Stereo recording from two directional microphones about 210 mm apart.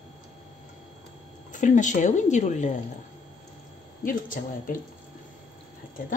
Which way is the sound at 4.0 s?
40° left (ahead or behind).